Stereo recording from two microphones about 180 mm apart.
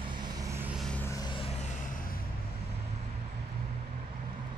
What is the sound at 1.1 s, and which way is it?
Vehicle, 25° left (ahead or behind).